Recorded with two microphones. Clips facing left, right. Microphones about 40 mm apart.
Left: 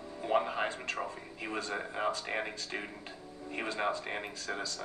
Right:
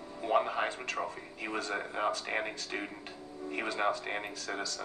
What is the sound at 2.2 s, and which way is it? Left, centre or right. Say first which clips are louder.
Music: right 1 dB; centre.